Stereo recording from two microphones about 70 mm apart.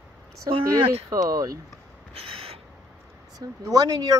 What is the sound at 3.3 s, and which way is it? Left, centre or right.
Speech, right.